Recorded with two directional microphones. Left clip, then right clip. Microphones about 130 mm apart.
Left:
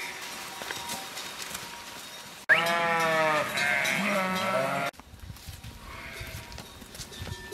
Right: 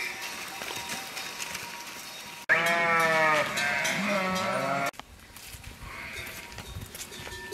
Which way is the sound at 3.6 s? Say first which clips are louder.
Left 1 dB; 30° left (ahead or behind).